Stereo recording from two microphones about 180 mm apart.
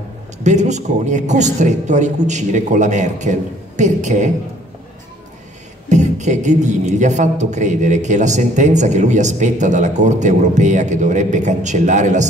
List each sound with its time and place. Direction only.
0.4 s a man's voice: 40° right (ahead or behind)
5.9 s a man's voice: 40° right (ahead or behind)